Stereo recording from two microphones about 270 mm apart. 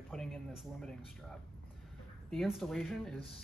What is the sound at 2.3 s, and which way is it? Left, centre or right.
Speech, centre.